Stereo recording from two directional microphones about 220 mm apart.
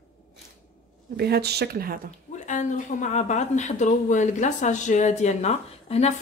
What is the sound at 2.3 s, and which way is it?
Speech, 35° left (ahead or behind).